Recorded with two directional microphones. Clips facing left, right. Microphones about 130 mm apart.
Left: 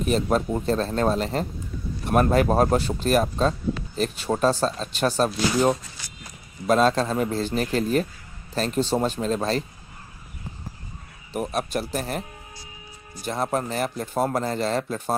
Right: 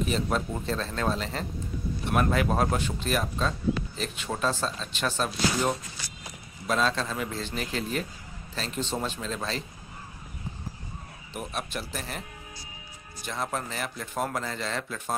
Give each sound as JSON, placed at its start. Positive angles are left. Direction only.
{"t": 0.0, "sound": "speech", "side_deg": 45}
{"t": 11.3, "sound": "speech", "side_deg": 40}
{"t": 13.2, "sound": "speech", "side_deg": 40}